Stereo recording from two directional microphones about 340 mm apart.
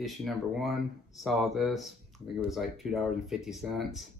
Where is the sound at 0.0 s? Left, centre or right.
Centre.